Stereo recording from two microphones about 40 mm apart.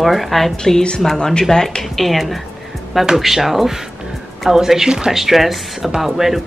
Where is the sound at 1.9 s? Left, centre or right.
Centre.